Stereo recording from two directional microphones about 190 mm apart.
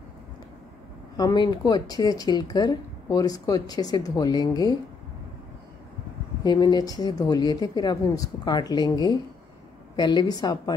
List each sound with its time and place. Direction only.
1.1 s speech: 20° left (ahead or behind)
6.4 s speech: 20° left (ahead or behind)